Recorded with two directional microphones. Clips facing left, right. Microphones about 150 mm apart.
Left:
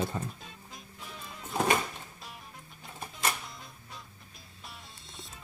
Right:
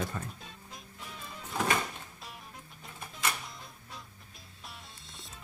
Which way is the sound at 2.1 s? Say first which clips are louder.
Even; centre (ahead or behind).